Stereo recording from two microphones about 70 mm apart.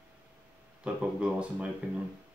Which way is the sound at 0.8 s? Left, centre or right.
Centre.